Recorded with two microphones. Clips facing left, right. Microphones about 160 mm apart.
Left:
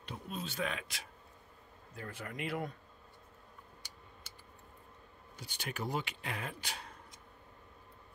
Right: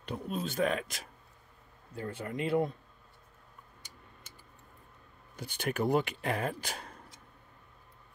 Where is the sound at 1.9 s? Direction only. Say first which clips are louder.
Right 7 dB; 30° right (ahead or behind).